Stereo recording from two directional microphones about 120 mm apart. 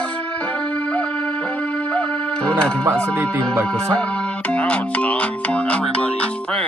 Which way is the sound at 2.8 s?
20° right (ahead or behind).